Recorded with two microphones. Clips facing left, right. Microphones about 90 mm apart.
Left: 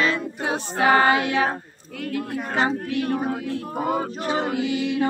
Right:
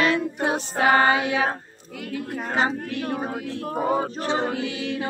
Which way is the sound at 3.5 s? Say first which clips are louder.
Right 1 dB; 25° right (ahead or behind).